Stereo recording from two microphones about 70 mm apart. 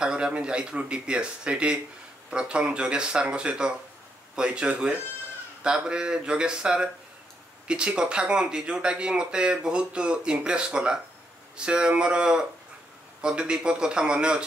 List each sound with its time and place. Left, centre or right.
0.0 s speech: centre